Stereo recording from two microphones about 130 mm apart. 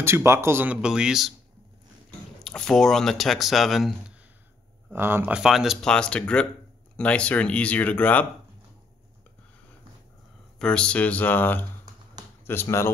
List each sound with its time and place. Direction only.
0.0 s speech: 20° right (ahead or behind); by 1.3 s 5° right (ahead or behind)
2.4 s speech: 5° left (ahead or behind)
4.9 s speech: 15° right (ahead or behind)
5.4 s speech: 5° right (ahead or behind)
10.6 s speech: 5° left (ahead or behind)